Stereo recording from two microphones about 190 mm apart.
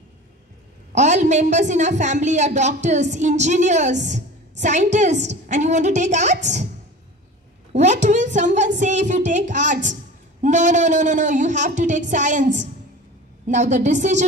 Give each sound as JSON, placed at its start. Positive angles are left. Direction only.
{"t": 0.9, "sound": "a woman's voice", "side_deg": -40}
{"t": 7.7, "sound": "a woman's voice", "side_deg": -40}
{"t": 13.5, "sound": "a woman's voice", "side_deg": -40}